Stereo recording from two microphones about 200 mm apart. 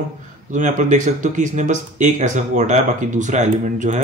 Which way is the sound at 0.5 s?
40° right (ahead or behind).